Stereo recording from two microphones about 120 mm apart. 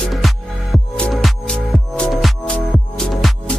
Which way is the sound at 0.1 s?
Centre (ahead or behind).